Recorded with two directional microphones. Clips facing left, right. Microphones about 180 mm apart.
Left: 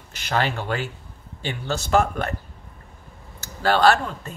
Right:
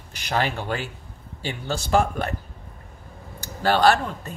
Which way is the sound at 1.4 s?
10° right (ahead or behind).